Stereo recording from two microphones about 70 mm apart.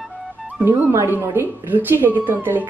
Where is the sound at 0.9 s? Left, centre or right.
Right.